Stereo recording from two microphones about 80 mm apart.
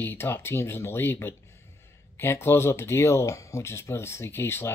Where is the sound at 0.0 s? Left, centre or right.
Left.